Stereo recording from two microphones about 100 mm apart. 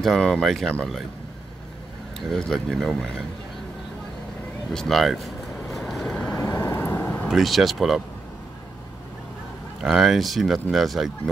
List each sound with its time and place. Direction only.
0.0 s speech: 5° left (ahead or behind)
2.3 s speech: 5° left (ahead or behind)
4.7 s vehicle: centre (ahead or behind)
6.2 s vehicle: 30° left (ahead or behind)
7.2 s speech: centre (ahead or behind)
9.8 s speech: centre (ahead or behind)